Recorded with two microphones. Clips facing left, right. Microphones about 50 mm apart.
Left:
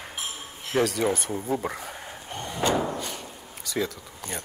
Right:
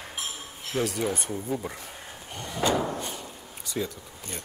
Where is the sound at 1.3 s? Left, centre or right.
Left.